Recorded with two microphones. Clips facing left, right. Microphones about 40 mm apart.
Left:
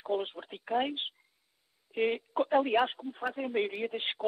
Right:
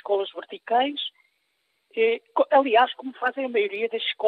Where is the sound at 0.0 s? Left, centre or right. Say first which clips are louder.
Right 8 dB; right.